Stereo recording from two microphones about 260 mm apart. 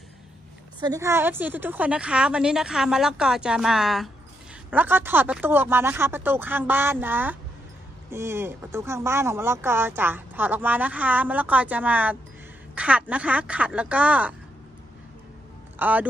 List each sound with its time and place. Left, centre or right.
0.8 s a woman's voice: centre
15.8 s a woman's voice: centre